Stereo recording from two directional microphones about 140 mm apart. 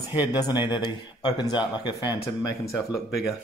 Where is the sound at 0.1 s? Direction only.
30° left (ahead or behind).